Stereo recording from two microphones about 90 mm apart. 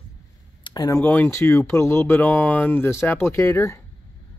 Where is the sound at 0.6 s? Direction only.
45° left (ahead or behind).